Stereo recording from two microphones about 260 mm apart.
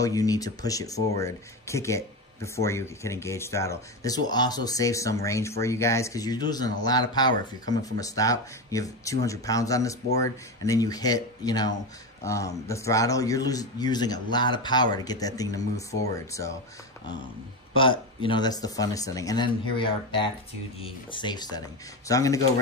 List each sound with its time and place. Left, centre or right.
0.0 s speech: centre
17.7 s speech: centre